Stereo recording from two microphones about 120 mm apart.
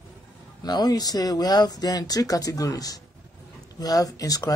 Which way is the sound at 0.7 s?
35° left (ahead or behind).